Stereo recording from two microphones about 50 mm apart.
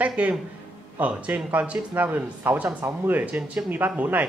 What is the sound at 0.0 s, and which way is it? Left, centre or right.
Speech, right.